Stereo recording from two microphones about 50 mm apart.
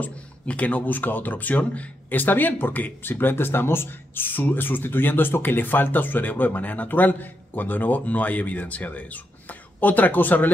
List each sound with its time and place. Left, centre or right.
0.0 s speech: left